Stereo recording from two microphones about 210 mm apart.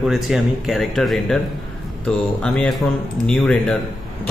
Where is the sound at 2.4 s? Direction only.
5° left (ahead or behind).